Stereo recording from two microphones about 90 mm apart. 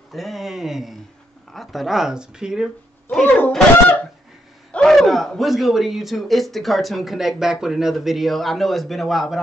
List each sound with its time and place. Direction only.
0.1 s speech: centre (ahead or behind)
3.3 s speech: 20° left (ahead or behind)
4.7 s speech: 5° left (ahead or behind)